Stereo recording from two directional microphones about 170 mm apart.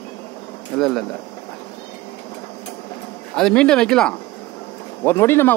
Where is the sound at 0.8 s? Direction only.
Centre (ahead or behind).